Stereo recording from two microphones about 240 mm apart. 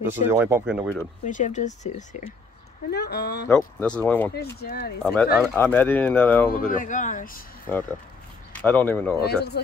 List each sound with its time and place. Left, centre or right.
0.1 s speech: centre
1.2 s speech: left
2.9 s speech: left
3.4 s speech: centre
4.6 s speech: left
5.0 s speech: centre
6.5 s speech: left
8.5 s speech: centre
9.2 s speech: left